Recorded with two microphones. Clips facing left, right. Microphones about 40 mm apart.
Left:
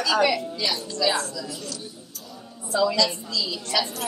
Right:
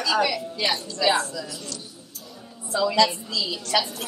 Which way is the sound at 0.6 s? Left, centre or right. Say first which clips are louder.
Right 6 dB; right.